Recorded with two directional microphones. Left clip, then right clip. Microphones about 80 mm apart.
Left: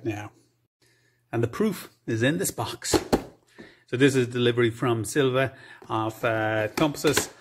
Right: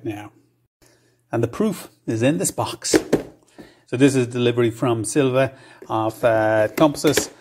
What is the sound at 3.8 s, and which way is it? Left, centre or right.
Speech, centre.